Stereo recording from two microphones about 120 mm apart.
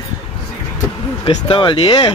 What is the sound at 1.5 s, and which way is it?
Speech, 45° left (ahead or behind).